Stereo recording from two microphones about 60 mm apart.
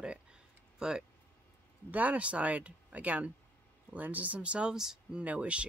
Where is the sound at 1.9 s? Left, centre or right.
Right.